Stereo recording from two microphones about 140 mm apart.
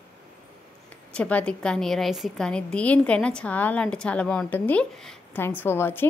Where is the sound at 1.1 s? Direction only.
10° left (ahead or behind).